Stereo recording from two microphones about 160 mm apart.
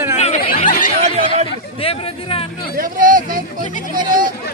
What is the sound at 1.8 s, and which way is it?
Chatter, 35° left (ahead or behind).